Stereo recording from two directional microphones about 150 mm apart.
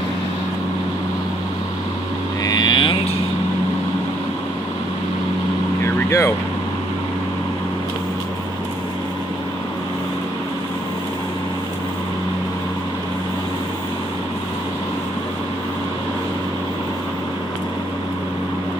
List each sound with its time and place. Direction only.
2.4 s vehicle: 30° left (ahead or behind)
6.0 s speech: 20° left (ahead or behind)